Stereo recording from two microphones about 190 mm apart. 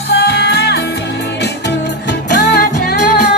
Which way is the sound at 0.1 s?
60° left (ahead or behind).